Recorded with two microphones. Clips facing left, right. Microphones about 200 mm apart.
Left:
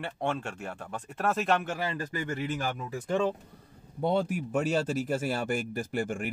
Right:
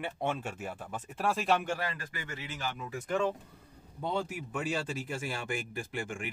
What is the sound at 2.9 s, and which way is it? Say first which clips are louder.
Speech: left 3 dB; 30° left (ahead or behind).